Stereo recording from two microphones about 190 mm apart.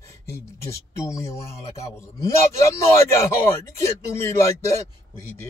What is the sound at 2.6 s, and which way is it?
A man's voice, 15° left (ahead or behind).